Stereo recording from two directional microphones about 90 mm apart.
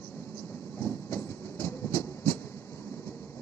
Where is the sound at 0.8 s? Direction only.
25° left (ahead or behind).